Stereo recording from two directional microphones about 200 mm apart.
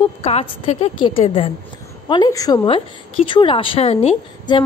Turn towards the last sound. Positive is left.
turn(degrees=30)  # may be behind; listen again after turning